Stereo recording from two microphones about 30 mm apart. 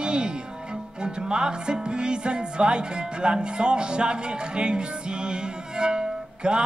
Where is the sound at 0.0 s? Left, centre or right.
Right.